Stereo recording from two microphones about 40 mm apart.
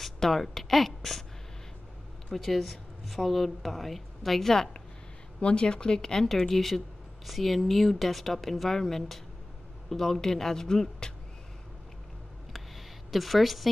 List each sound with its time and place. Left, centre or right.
0.0 s speech: centre
2.3 s a woman's voice: centre
5.4 s speech: left
6.2 s a woman's voice: centre
12.5 s a sound: centre